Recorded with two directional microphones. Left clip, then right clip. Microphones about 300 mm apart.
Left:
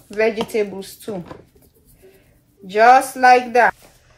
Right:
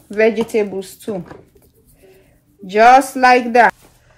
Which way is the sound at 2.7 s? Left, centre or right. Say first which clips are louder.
Right 3 dB; right.